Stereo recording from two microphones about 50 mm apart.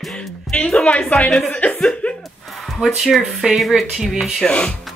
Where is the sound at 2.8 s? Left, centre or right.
Centre.